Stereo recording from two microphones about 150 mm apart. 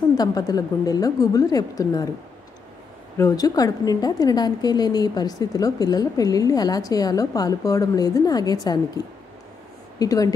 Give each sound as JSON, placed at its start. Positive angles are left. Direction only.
{"t": 0.2, "sound": "a woman's voice", "side_deg": 25}
{"t": 3.2, "sound": "a woman's voice", "side_deg": 25}